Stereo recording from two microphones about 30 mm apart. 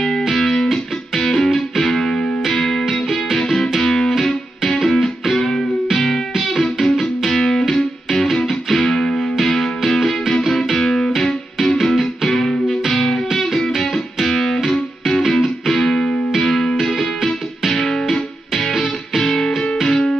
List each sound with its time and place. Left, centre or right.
0.3 s music: centre
2.0 s music: left
2.8 s music: centre
3.7 s music: centre
5.3 s music: left
6.5 s music: centre
8.8 s music: left
9.8 s music: centre
11.1 s music: centre
13.3 s music: centre
16.4 s music: centre
16.8 s music: centre